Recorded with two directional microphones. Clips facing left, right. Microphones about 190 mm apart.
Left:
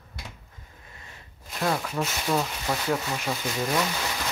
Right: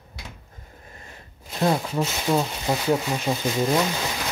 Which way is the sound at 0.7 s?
40° right (ahead or behind).